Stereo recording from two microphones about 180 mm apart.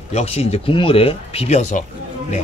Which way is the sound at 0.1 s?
35° left (ahead or behind).